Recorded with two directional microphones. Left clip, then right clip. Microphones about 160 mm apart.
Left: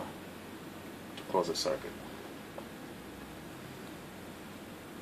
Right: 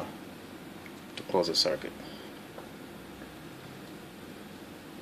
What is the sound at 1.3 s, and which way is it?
Speech, 70° right (ahead or behind).